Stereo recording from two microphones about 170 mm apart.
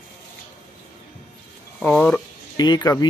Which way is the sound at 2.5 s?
25° left (ahead or behind).